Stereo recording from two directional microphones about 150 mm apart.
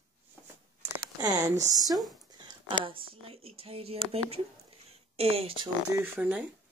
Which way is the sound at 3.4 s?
40° right (ahead or behind).